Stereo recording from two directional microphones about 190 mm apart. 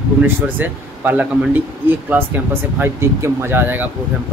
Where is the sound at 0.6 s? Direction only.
10° right (ahead or behind).